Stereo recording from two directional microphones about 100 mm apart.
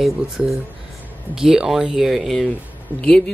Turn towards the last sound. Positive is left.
turn(degrees=10)  # may be behind; listen again after turning